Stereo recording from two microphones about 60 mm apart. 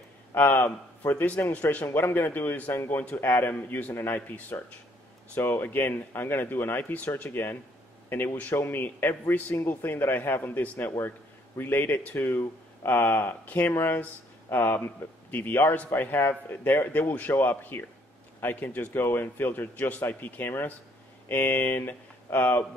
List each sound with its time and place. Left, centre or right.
0.3 s a man's voice: left
1.9 s speech: left
2.7 s a man's voice: left
9.6 s speech: left